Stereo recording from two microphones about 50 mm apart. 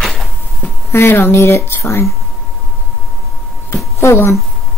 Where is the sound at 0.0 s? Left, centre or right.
Centre.